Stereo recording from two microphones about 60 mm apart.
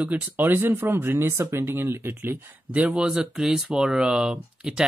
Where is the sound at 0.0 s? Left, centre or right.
Right.